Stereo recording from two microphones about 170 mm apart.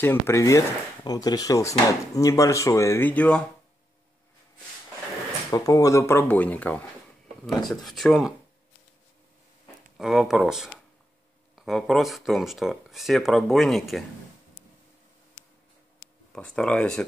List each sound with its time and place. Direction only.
0.0 s speech: 15° left (ahead or behind)
5.5 s speech: 20° left (ahead or behind); by 8.4 s centre (ahead or behind)
9.9 s speech: centre (ahead or behind)
16.3 s speech: 5° left (ahead or behind)